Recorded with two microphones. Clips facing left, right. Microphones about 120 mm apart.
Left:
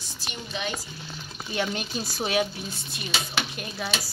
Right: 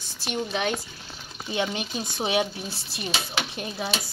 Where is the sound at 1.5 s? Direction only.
20° right (ahead or behind).